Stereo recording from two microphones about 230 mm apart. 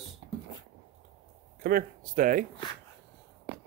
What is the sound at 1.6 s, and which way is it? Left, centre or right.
Speech, right.